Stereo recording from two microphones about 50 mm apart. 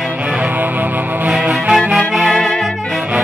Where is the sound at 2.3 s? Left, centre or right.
Centre.